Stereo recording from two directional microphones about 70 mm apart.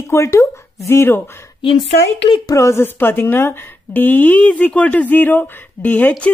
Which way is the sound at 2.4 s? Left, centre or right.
Left.